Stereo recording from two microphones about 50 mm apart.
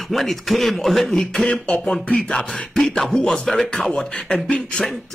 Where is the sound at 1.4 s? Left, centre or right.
Centre.